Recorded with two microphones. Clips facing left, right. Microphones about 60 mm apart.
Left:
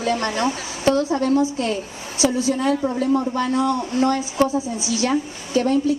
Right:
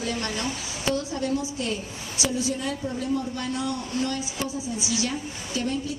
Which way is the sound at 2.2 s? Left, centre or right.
Left.